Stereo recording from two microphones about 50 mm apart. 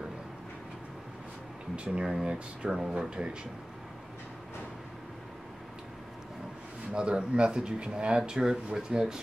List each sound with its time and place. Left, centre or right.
1.9 s speech: centre
6.9 s speech: centre